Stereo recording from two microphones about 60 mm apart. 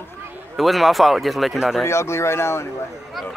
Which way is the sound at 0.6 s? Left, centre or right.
Centre.